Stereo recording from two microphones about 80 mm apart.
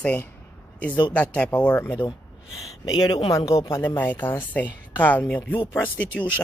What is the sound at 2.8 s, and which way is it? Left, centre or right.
Speech, left.